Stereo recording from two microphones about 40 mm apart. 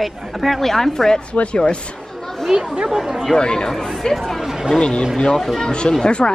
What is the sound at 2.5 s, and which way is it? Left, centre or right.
Speech, centre.